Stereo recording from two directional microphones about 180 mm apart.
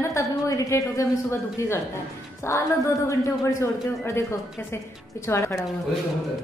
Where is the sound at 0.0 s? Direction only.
15° left (ahead or behind).